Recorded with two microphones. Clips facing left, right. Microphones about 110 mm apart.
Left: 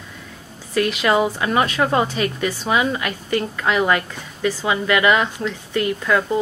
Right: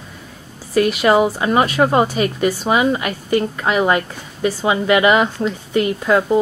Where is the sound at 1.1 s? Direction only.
15° right (ahead or behind).